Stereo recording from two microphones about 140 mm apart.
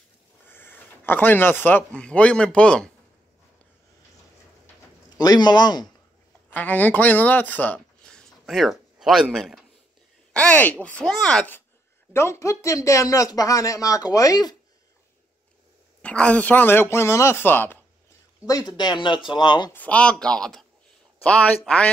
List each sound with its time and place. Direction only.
0.5 s a sound: 15° left (ahead or behind)
2.0 s speech: 10° left (ahead or behind)
5.1 s speech: 30° left (ahead or behind)
6.5 s speech: 10° left (ahead or behind)
10.3 s speech: 10° left (ahead or behind); by 14.6 s 25° left (ahead or behind)
16.0 s speech: 10° left (ahead or behind)
18.4 s speech: 25° left (ahead or behind)
19.7 s speech: 10° left (ahead or behind)